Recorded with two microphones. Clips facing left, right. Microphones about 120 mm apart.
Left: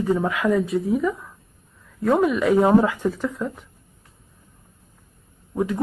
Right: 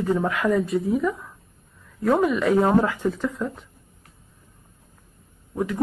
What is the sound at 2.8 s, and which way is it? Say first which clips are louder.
Speech: left 1 dB; 10° left (ahead or behind).